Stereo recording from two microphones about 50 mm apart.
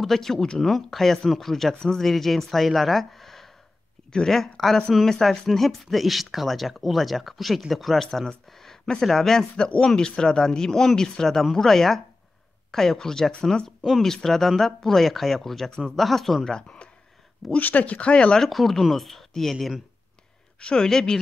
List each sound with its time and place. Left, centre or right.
0.0 s speech: centre
16.4 s speech: centre
17.6 s speech: left
18.5 s speech: centre
20.6 s speech: centre